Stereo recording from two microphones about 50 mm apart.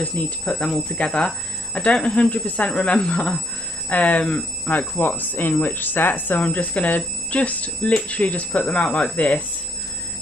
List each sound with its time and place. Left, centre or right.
0.2 s speech: left
0.5 s speech: centre
3.9 s speech: left
4.6 s speech: left